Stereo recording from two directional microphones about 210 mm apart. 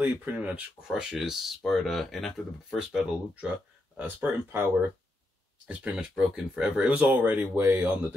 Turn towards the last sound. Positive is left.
turn(degrees=-10)  # may be behind; listen again after turning